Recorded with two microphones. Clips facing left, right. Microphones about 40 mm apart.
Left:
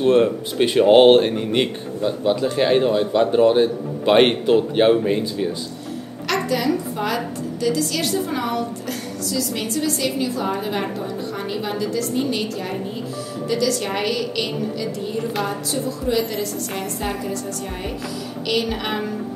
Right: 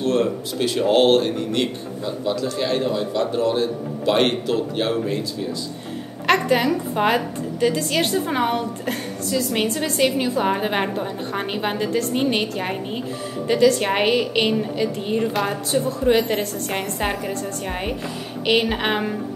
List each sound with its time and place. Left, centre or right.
0.0 s speech: left
6.2 s a woman's voice: right